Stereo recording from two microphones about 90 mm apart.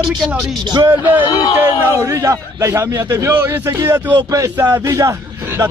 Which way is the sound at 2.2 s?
35° right (ahead or behind).